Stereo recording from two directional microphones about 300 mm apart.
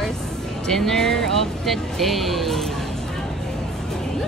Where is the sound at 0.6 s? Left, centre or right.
Centre.